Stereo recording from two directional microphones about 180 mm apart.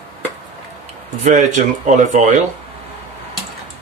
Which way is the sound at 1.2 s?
40° right (ahead or behind).